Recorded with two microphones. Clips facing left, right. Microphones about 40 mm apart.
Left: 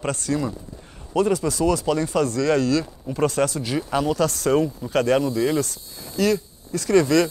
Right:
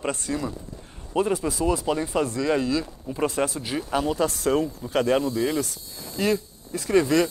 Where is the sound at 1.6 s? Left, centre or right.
Left.